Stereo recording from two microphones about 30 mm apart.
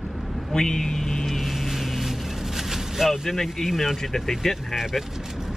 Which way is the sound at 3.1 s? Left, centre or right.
Centre.